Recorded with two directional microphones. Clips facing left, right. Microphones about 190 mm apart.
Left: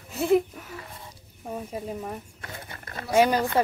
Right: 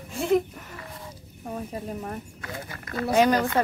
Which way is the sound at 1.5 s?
5° left (ahead or behind).